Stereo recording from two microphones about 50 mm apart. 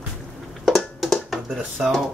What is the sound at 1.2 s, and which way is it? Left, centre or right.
Speech, centre.